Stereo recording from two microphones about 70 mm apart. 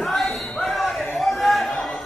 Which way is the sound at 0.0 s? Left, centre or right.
Centre.